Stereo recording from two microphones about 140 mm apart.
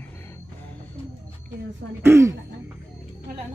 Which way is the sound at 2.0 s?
20° right (ahead or behind).